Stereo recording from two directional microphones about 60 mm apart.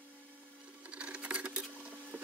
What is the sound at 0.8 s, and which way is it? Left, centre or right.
Sewing machine, centre.